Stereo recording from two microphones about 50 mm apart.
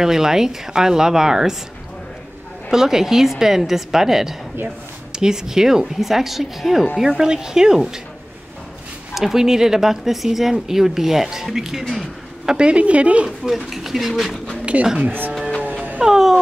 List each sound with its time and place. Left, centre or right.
0.0 s speech: centre
2.7 s speech: centre
7.1 s speech: centre
9.1 s speech: centre
11.9 s a sound: centre
12.5 s speech: right
13.6 s speech: centre
14.6 s a sound: right
15.0 s speech: right
16.0 s speech: centre